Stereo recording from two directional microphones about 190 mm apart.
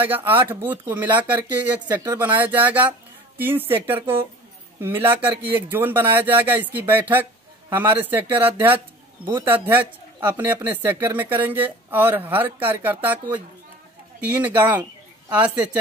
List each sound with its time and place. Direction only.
0.0 s speech: 10° right (ahead or behind)